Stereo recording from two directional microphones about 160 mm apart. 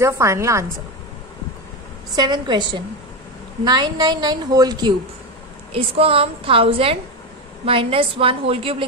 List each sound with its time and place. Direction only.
0.0 s a woman's voice: 20° right (ahead or behind)
2.1 s a woman's voice: 25° right (ahead or behind)
5.7 s a woman's voice: 35° right (ahead or behind)